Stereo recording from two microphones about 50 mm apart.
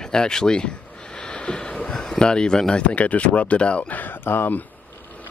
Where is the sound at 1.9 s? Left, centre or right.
Centre.